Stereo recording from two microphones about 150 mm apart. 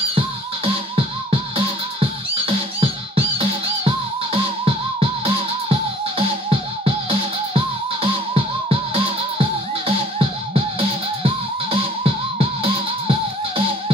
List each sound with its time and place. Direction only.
2.0 s music: 40° right (ahead or behind)